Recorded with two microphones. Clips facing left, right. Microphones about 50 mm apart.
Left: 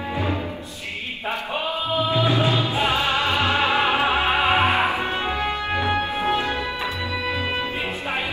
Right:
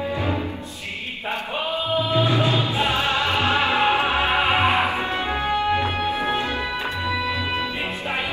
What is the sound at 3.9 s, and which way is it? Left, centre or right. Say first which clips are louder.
Music: even; left.